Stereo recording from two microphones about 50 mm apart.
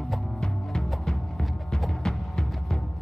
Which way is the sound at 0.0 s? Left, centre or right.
Centre.